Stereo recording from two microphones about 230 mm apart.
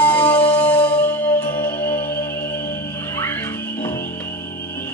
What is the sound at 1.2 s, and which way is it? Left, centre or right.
Music, left.